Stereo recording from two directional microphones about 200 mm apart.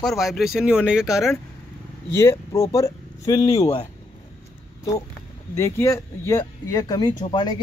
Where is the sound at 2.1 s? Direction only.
15° left (ahead or behind).